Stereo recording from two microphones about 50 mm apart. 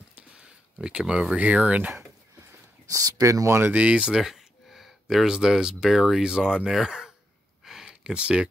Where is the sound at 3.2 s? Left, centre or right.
Right.